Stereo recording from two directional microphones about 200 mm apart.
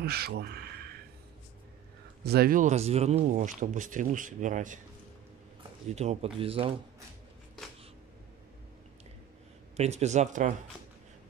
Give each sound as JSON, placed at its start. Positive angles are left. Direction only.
{"t": 0.0, "sound": "a sound", "side_deg": -50}
{"t": 2.2, "sound": "speech", "side_deg": -50}
{"t": 5.9, "sound": "speech", "side_deg": -35}
{"t": 9.8, "sound": "speech", "side_deg": -35}